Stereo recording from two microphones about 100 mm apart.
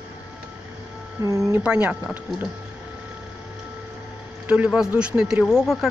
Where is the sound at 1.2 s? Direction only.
30° right (ahead or behind).